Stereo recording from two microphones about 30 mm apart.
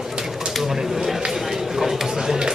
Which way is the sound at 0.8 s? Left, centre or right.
Centre.